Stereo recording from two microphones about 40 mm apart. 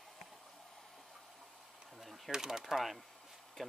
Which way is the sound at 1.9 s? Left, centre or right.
Centre.